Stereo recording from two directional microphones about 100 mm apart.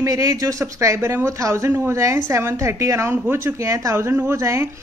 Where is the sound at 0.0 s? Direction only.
30° right (ahead or behind).